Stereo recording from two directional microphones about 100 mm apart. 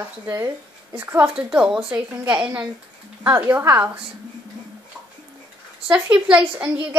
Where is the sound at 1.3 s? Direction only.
10° right (ahead or behind).